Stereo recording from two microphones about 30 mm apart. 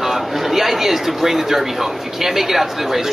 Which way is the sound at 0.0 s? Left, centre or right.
Centre.